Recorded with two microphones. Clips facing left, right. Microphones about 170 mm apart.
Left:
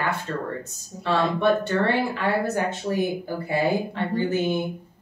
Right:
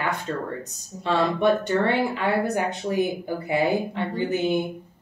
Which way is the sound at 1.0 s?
20° right (ahead or behind).